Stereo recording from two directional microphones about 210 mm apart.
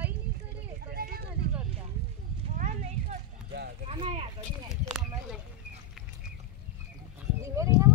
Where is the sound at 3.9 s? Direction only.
25° right (ahead or behind).